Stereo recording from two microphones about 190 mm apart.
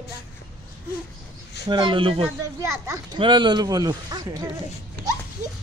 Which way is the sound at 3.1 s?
25° right (ahead or behind).